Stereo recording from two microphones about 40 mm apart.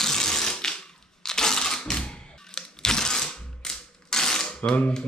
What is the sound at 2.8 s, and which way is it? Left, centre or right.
Mechanisms, centre.